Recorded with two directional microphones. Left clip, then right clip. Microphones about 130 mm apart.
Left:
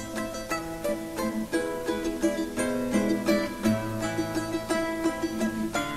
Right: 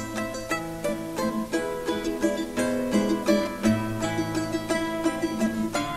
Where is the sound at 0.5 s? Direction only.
15° right (ahead or behind).